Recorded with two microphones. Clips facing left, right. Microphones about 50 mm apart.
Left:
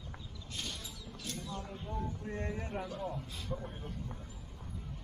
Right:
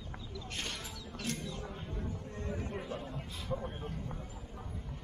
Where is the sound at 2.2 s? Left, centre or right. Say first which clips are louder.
Left 4 dB; left.